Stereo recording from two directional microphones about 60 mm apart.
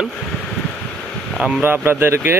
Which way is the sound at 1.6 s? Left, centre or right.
Right.